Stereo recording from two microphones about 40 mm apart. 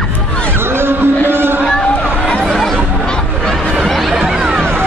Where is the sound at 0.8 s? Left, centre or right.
Right.